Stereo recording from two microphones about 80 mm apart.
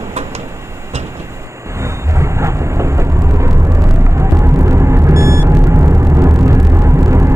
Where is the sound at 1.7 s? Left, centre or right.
Right.